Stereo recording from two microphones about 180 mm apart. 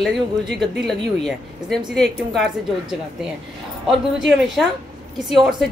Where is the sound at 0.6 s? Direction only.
Centre (ahead or behind).